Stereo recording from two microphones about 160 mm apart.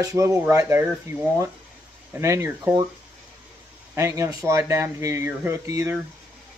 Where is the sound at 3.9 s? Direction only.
15° right (ahead or behind).